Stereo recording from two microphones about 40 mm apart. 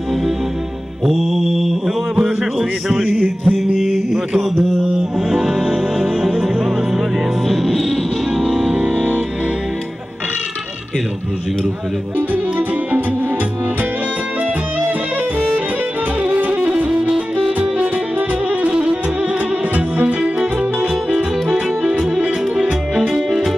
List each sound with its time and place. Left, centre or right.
1.1 s mantra: centre
3.4 s mantra: centre
5.3 s music: centre
8.7 s music: right
12.2 s music: right
16.2 s music: right
18.5 s music: right
22.2 s music: right
23.1 s music: centre